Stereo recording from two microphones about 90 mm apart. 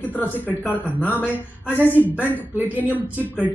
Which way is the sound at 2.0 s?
30° right (ahead or behind).